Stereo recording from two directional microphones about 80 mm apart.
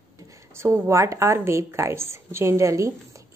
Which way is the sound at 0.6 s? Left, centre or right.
Right.